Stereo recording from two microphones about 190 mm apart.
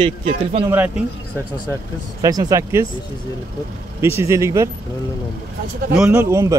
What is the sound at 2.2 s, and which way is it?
Speech, 20° right (ahead or behind).